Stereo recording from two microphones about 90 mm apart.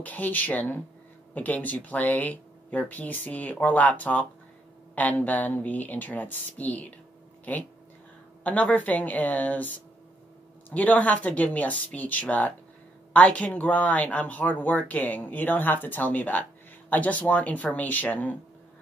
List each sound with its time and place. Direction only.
0.0 s speech: 20° left (ahead or behind)
10.7 s speech: 15° left (ahead or behind)